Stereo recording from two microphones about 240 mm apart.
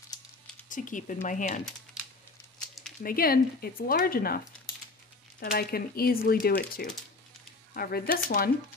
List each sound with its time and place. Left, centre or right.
0.7 s speech: left
3.0 s speech: left
5.4 s speech: left